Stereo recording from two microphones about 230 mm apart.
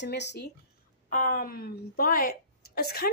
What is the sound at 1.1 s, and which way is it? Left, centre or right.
A woman's voice, left.